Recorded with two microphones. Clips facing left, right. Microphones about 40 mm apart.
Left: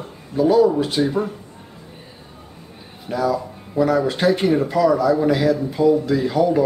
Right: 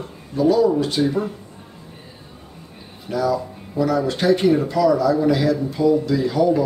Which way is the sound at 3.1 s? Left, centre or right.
Centre.